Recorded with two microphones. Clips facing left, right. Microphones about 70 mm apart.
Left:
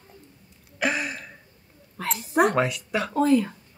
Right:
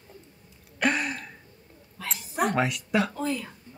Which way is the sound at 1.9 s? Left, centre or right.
Left.